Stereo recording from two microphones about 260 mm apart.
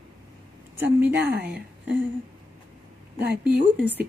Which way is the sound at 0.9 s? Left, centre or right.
Right.